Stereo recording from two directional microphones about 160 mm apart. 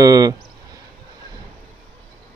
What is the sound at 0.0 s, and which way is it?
Speech, 25° right (ahead or behind).